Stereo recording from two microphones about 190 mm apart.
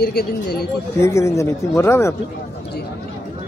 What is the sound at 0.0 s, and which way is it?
Speech, 55° left (ahead or behind).